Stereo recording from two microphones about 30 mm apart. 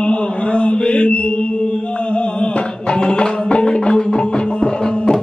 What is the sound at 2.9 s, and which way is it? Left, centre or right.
Music, left.